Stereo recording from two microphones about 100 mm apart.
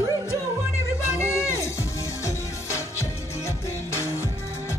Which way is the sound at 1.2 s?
30° left (ahead or behind).